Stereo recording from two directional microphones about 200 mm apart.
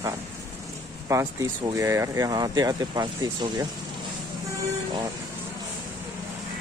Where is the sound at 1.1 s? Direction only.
15° right (ahead or behind).